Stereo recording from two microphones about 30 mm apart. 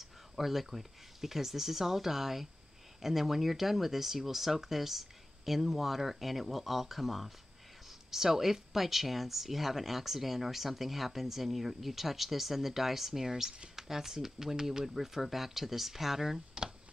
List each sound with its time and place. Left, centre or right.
0.0 s speech: centre
13.3 s speech: centre
16.6 s a sound: right